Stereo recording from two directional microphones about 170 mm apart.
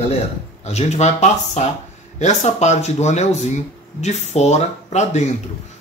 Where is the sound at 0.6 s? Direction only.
40° left (ahead or behind).